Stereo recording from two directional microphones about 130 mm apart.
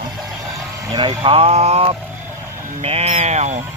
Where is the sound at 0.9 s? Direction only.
45° right (ahead or behind); by 3.6 s 60° right (ahead or behind).